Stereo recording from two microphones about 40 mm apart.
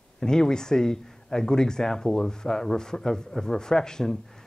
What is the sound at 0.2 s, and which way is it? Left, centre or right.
Speech, centre.